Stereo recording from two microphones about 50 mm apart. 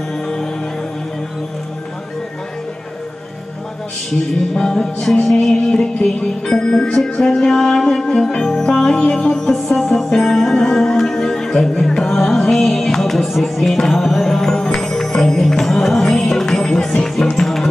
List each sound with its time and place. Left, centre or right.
4.6 s music: centre